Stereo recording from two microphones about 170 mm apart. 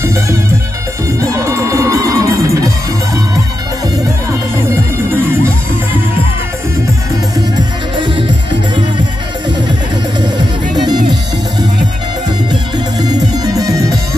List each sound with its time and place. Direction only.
1.2 s music: 20° right (ahead or behind)
10.8 s music: 25° right (ahead or behind)
12.7 s music: 25° right (ahead or behind)